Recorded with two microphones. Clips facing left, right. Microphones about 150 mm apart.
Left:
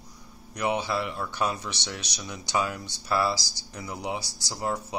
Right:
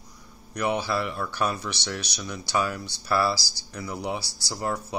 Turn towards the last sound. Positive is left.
turn(degrees=20)  # may be behind; listen again after turning